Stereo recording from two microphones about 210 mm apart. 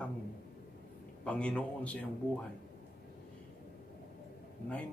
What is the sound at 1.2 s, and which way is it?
Speech, 5° left (ahead or behind).